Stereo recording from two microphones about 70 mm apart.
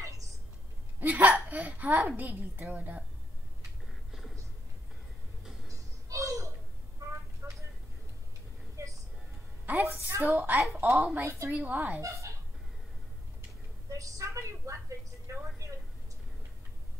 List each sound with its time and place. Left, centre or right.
0.9 s hiccup: right
1.5 s a child's voice: right
4.1 s music: centre
5.7 s a sound: right
7.4 s a sound: right
8.7 s music: right
9.7 s a woman's voice: right
11.2 s a woman's voice: right
11.5 s a woman's voice: right
12.0 s speech: right
13.8 s a sound: right